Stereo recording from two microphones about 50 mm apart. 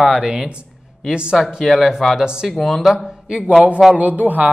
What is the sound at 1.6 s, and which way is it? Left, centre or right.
Speech, centre.